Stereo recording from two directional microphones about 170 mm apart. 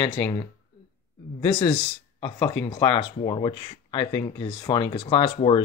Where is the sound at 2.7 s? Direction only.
30° left (ahead or behind).